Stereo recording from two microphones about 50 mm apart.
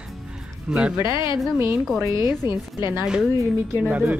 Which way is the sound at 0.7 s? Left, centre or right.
Right.